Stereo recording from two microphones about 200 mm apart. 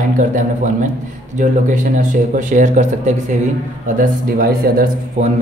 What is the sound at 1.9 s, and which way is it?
A man's voice, 40° right (ahead or behind).